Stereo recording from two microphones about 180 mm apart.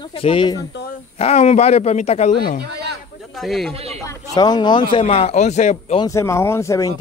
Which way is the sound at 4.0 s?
20° left (ahead or behind).